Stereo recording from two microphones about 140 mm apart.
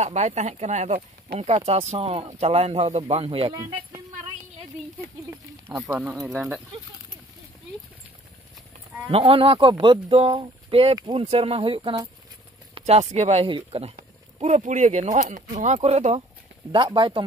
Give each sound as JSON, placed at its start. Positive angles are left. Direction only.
{"t": 0.0, "sound": "speech", "side_deg": -55}
{"t": 5.3, "sound": "speech", "side_deg": -15}
{"t": 9.1, "sound": "speech", "side_deg": -40}
{"t": 11.2, "sound": "speech", "side_deg": -45}
{"t": 14.4, "sound": "speech", "side_deg": -55}
{"t": 16.7, "sound": "speech", "side_deg": -35}